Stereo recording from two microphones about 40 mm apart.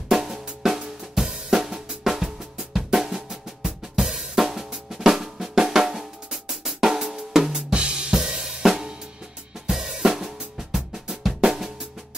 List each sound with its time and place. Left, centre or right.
0.1 s drum: centre
0.6 s drum kit: centre
2.0 s drum: centre
7.5 s drum kit: right
8.1 s cymbal: centre
9.7 s drum kit: centre